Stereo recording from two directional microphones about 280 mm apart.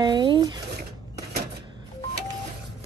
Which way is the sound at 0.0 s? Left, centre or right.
Centre.